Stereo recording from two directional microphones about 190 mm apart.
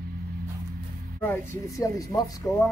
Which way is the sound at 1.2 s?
15° left (ahead or behind).